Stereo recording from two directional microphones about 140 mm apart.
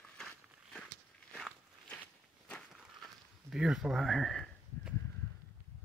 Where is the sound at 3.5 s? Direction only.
5° right (ahead or behind).